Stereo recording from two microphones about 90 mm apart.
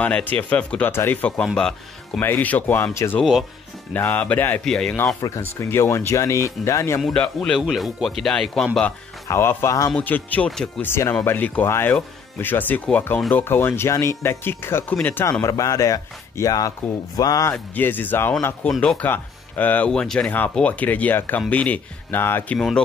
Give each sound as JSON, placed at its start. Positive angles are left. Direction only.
{"t": 0.0, "sound": "speech", "side_deg": 15}
{"t": 1.4, "sound": "speech", "side_deg": 10}
{"t": 2.1, "sound": "speech", "side_deg": 20}
{"t": 4.6, "sound": "speech", "side_deg": 5}
{"t": 5.2, "sound": "speech", "side_deg": 40}
{"t": 7.3, "sound": "speech", "side_deg": 0}
{"t": 9.3, "sound": "speech", "side_deg": 25}
{"t": 9.9, "sound": "speech", "side_deg": 20}
{"t": 15.4, "sound": "speech", "side_deg": 40}
{"t": 17.5, "sound": "speech", "side_deg": 20}
{"t": 19.9, "sound": "speech", "side_deg": 5}